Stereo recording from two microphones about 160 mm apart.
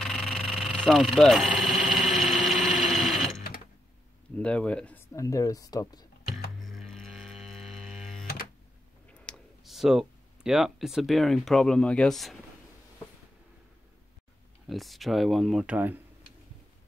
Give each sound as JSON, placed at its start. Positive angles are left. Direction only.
{"t": 0.0, "sound": "engine", "side_deg": 0}
{"t": 4.4, "sound": "speech", "side_deg": 10}
{"t": 5.1, "sound": "speech", "side_deg": 20}
{"t": 6.6, "sound": "music", "side_deg": 0}
{"t": 9.2, "sound": "speech", "side_deg": 0}
{"t": 14.7, "sound": "speech", "side_deg": 0}